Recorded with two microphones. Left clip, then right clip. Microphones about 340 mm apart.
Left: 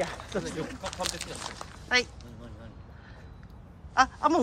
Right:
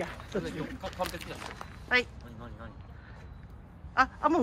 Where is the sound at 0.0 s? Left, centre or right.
Left.